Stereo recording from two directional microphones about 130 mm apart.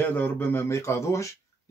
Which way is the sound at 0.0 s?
15° left (ahead or behind).